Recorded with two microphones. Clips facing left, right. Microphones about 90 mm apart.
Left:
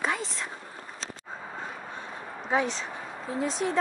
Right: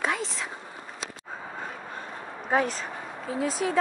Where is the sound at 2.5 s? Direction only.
45° right (ahead or behind).